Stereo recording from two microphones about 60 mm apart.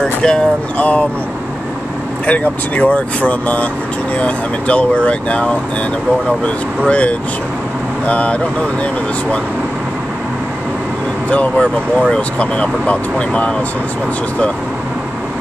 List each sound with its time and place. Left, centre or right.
0.0 s a sound: centre
0.7 s speech: left
2.2 s speech: left
6.9 s speech: left
11.2 s speech: left